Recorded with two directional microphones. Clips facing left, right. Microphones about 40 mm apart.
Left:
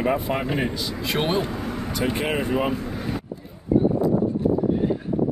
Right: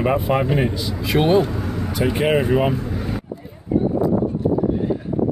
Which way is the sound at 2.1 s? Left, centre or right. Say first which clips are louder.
Right 8 dB; centre.